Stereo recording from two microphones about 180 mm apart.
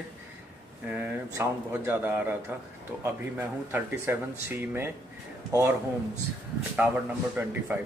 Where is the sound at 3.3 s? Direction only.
10° right (ahead or behind).